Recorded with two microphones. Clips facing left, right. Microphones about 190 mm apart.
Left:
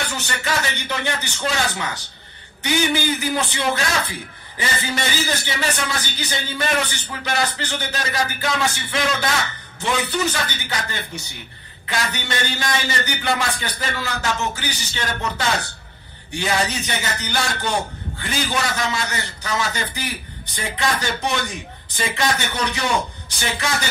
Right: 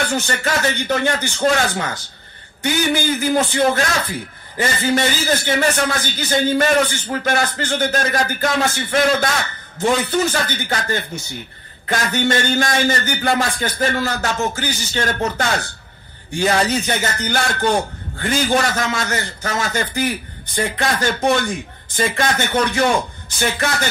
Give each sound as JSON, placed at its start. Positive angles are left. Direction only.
{"t": 0.0, "sound": "a man's voice", "side_deg": -45}